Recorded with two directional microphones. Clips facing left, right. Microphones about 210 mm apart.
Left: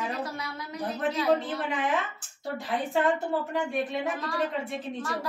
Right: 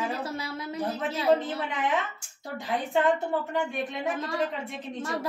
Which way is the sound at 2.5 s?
Centre (ahead or behind).